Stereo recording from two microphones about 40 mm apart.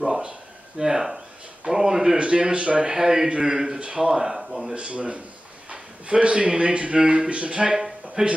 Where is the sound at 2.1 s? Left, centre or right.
Right.